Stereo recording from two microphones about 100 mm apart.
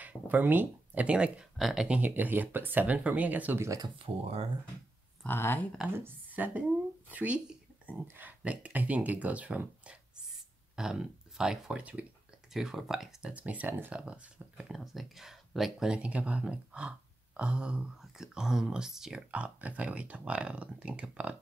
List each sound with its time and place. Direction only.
0.0 s speech: 20° right (ahead or behind)
2.0 s speech: 15° right (ahead or behind)
4.2 s speech: 85° right
5.2 s speech: 20° left (ahead or behind)
5.9 s speech: 15° right (ahead or behind)
12.5 s speech: 5° right (ahead or behind)